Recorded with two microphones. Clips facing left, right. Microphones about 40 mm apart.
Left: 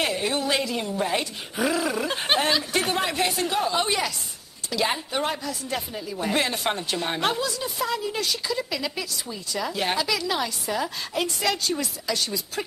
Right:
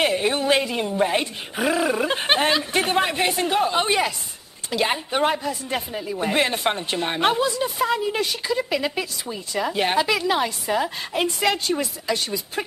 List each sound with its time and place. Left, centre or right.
0.1 s a woman's voice: right
5.2 s speech: right